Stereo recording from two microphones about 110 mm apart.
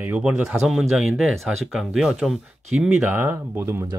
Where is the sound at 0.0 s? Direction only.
15° right (ahead or behind).